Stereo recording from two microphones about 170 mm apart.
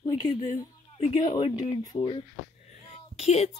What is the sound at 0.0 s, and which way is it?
A woman's voice, 25° left (ahead or behind).